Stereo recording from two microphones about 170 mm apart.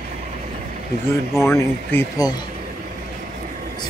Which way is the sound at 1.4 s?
15° left (ahead or behind).